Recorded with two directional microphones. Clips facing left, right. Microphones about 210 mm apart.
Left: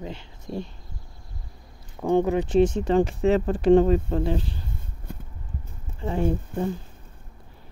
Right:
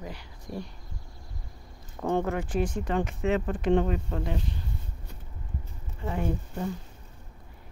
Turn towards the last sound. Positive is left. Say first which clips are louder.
# left 6 dB
turn(degrees=30)  # may be behind; listen again after turning